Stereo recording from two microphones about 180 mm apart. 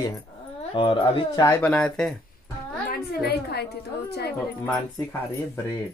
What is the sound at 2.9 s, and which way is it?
A woman's voice, 60° left (ahead or behind).